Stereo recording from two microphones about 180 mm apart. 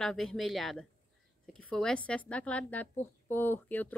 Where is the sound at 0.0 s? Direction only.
5° left (ahead or behind).